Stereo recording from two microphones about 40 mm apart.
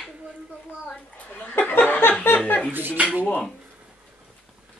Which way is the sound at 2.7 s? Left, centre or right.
Right.